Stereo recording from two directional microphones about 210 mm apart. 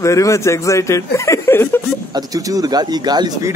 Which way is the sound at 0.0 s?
15° left (ahead or behind).